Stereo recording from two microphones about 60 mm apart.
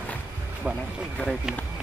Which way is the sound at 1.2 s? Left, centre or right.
Left.